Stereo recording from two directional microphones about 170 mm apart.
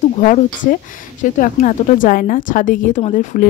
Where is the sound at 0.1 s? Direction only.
45° left (ahead or behind).